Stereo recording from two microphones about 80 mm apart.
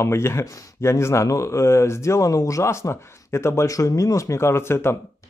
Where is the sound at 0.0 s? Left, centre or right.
Left.